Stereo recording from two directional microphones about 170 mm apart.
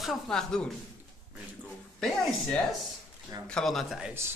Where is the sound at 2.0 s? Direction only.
5° left (ahead or behind).